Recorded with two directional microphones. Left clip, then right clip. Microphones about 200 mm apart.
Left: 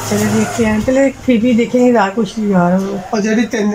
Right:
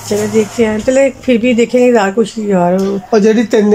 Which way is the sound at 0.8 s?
5° right (ahead or behind).